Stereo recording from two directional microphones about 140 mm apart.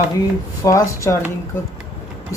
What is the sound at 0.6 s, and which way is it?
Speech, 20° left (ahead or behind).